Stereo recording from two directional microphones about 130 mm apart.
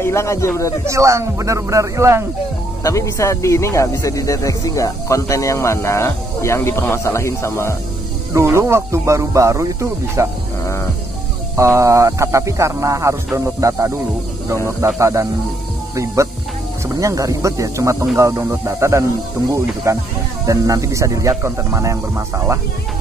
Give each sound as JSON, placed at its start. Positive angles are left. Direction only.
{"t": 0.0, "sound": "speech", "side_deg": 20}
{"t": 0.8, "sound": "speech", "side_deg": -25}
{"t": 2.8, "sound": "speech", "side_deg": 25}
{"t": 8.3, "sound": "speech", "side_deg": -20}
{"t": 11.5, "sound": "speech", "side_deg": -20}
{"t": 15.0, "sound": "speech", "side_deg": -20}
{"t": 16.9, "sound": "speech", "side_deg": -25}